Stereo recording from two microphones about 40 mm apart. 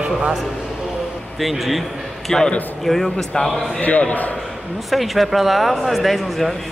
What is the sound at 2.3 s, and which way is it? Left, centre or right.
A man's voice, centre.